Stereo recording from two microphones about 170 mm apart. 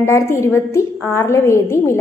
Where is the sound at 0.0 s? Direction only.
15° left (ahead or behind).